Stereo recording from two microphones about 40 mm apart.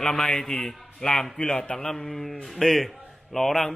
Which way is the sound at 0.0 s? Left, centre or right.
Centre.